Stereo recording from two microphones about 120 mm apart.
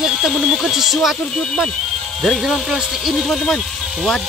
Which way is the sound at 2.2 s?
Centre (ahead or behind).